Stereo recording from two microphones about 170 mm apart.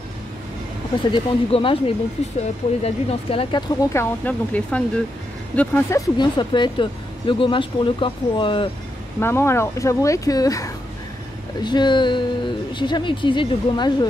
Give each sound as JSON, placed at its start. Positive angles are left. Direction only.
{"t": 1.1, "sound": "speech", "side_deg": 30}
{"t": 3.9, "sound": "speech", "side_deg": 10}
{"t": 6.1, "sound": "speech", "side_deg": 25}
{"t": 9.2, "sound": "speech", "side_deg": 15}